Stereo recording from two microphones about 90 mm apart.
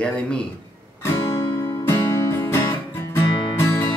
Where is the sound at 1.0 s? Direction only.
30° left (ahead or behind).